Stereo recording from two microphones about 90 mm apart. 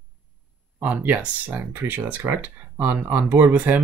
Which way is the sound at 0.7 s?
20° right (ahead or behind).